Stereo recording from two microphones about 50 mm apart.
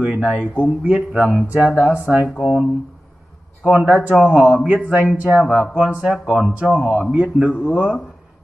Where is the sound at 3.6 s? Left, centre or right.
Right.